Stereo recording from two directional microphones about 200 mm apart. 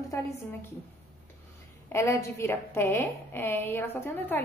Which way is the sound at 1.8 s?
15° left (ahead or behind).